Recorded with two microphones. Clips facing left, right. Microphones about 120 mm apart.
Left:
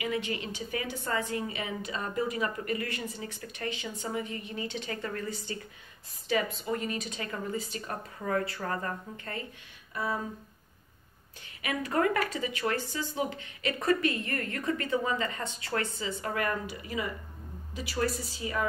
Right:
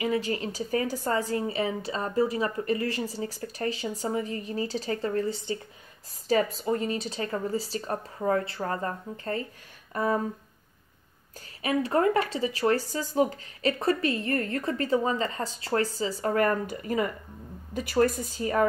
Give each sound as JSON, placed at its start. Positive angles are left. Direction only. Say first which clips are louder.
{"t": 0.0, "sound": "a woman's voice", "louder": "right 5 dB", "side_deg": -35}
{"t": 6.2, "sound": "a woman's voice", "louder": "right 5 dB", "side_deg": -35}
{"t": 9.9, "sound": "a woman's voice", "louder": "right 6 dB", "side_deg": -45}
{"t": 11.6, "sound": "a woman's voice", "louder": "right 4 dB", "side_deg": -30}